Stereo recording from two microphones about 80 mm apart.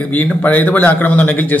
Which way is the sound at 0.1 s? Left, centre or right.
Left.